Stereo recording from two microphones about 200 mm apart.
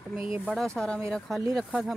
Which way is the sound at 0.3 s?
Centre (ahead or behind).